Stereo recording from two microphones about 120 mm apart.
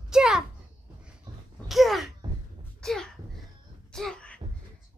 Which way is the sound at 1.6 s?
Centre (ahead or behind).